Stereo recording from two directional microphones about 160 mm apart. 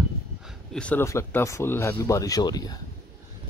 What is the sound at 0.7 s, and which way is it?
Speech, 5° left (ahead or behind).